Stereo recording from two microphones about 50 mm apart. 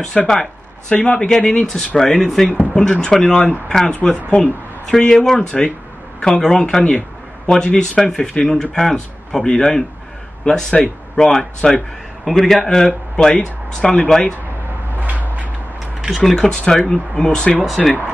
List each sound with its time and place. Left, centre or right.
0.3 s a sound: centre
0.9 s speech: left
2.0 s speech: centre
12.5 s speech: centre
15.0 s a sound: right
16.2 s speech: centre
17.6 s speech: centre